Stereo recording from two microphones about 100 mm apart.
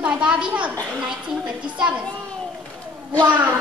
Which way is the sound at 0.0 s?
10° right (ahead or behind).